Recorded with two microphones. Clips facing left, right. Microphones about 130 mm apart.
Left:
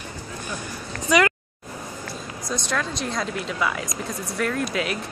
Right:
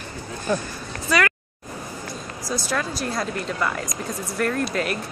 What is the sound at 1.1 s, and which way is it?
Speech, 15° left (ahead or behind).